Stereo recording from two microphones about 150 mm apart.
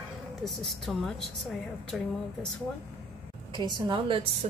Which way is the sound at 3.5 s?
30° right (ahead or behind).